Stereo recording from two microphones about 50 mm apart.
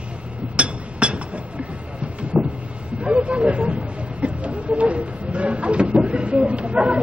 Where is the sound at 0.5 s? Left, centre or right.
Right.